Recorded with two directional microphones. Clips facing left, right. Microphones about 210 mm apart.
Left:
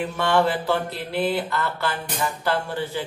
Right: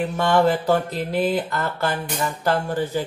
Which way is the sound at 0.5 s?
45° right (ahead or behind).